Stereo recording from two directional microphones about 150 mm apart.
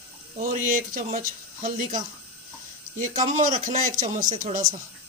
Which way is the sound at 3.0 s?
55° right (ahead or behind).